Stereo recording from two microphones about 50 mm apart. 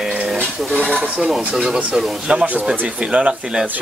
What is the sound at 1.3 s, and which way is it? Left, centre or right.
Speech, centre.